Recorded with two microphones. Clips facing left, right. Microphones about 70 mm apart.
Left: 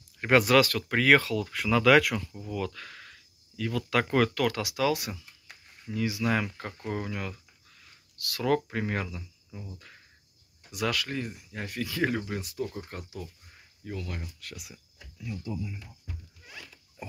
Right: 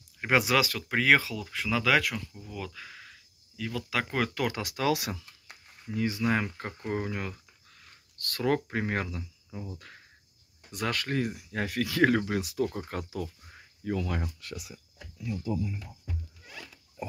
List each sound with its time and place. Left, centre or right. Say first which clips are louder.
0.2 s speech: left 4 dB; centre
4.3 s speech: left 3 dB; centre
4.9 s speech: right 2 dB; right
5.9 s speech: even; right
10.7 s speech: left 1 dB; right
11.1 s speech: right 5 dB; right